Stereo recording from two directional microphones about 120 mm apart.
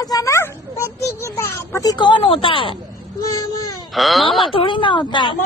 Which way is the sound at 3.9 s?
Centre (ahead or behind).